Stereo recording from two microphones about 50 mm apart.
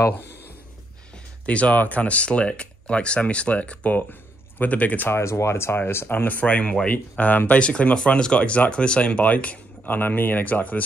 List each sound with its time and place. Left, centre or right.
1.4 s speech: left
5.1 s speech: left
6.1 s speech: left
6.9 s speech: left
7.5 s speech: left